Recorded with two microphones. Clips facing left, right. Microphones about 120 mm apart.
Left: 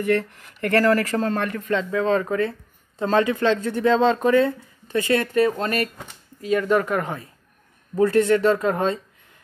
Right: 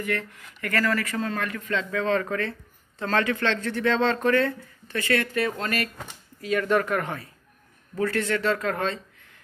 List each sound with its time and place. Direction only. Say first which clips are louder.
0.1 s speech: left 8 dB; 35° left (ahead or behind); by 9.0 s 20° left (ahead or behind)